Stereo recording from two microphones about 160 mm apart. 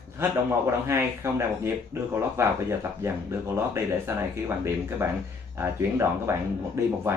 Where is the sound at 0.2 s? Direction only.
15° right (ahead or behind).